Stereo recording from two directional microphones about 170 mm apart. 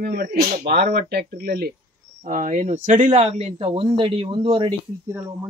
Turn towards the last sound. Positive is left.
turn(degrees=-15)  # may be behind; listen again after turning